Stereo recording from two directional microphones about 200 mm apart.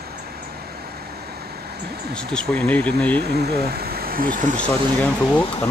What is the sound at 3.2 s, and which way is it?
Speech, 50° right (ahead or behind).